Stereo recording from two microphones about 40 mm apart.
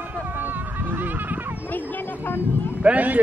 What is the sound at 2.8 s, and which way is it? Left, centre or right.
Speech, right.